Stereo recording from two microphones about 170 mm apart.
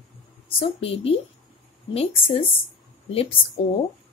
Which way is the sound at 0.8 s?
35° left (ahead or behind).